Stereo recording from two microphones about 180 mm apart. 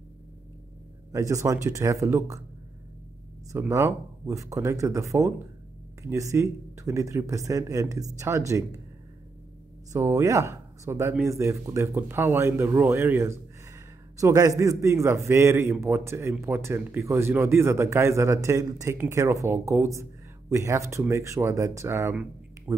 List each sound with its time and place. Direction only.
1.1 s a man's voice: 15° right (ahead or behind)
3.5 s a man's voice: 15° right (ahead or behind)
9.9 s a man's voice: 15° right (ahead or behind)